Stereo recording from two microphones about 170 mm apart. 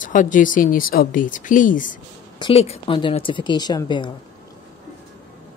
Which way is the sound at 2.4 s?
35° left (ahead or behind).